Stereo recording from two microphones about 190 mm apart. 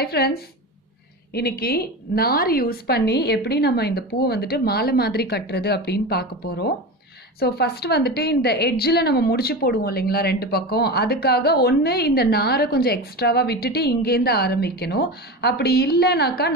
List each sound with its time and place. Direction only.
0.0 s a woman's voice: 55° left (ahead or behind)